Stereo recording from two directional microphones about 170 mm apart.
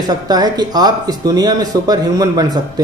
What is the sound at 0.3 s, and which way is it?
Speech, 25° right (ahead or behind).